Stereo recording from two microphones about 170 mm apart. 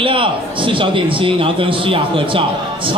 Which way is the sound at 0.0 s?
30° right (ahead or behind).